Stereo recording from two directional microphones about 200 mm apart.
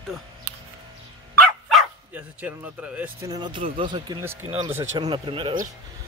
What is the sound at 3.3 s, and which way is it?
Speech, 25° right (ahead or behind).